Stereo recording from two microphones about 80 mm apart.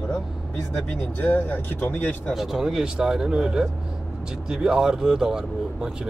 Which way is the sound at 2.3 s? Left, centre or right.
Centre.